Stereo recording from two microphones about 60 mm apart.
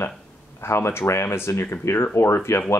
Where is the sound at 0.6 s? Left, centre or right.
Left.